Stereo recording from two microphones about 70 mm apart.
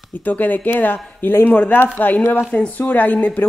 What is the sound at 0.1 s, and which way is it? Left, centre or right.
A woman's voice, left.